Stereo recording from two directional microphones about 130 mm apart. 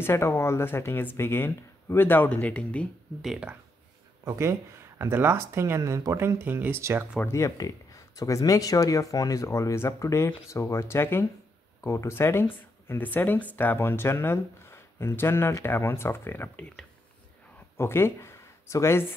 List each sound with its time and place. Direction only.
0.0 s speech: 20° left (ahead or behind)
3.2 s speech: 5° right (ahead or behind)
4.2 s speech: 25° right (ahead or behind)
7.2 s speech: 20° left (ahead or behind)